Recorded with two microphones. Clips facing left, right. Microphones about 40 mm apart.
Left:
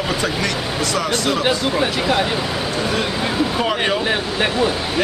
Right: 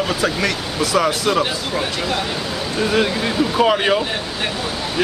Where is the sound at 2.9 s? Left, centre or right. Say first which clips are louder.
Right 2 dB; centre.